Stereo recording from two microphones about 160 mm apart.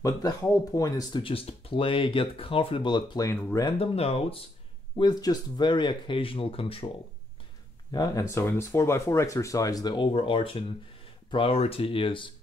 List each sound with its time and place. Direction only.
0.0 s speech: 20° left (ahead or behind)
3.7 s speech: 35° left (ahead or behind)
4.9 s speech: 25° left (ahead or behind)
7.9 s speech: 20° left (ahead or behind)